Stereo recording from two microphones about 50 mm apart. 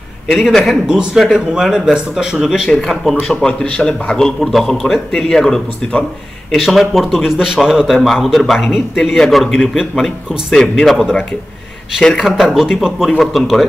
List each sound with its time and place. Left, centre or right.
0.3 s speech: centre
0.8 s speech: centre
2.7 s speech: centre
3.4 s a man's voice: centre
6.5 s speech: centre
10.5 s a man's voice: centre
12.2 s speech: centre
13.2 s speech: centre